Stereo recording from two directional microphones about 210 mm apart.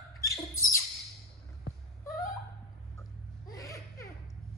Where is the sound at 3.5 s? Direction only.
15° left (ahead or behind).